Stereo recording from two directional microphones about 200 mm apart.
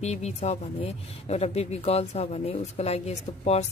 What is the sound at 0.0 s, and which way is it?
Speech, 35° left (ahead or behind).